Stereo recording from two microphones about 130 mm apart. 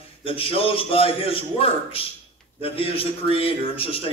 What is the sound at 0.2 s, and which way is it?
A man's voice, 45° left (ahead or behind).